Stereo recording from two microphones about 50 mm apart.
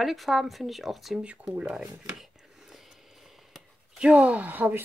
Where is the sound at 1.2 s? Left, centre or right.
Right.